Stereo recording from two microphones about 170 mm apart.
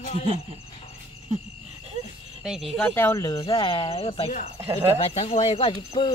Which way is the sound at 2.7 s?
10° left (ahead or behind).